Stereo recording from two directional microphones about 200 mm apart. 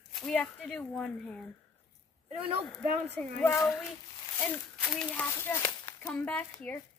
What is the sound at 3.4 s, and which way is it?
Speech, 15° left (ahead or behind).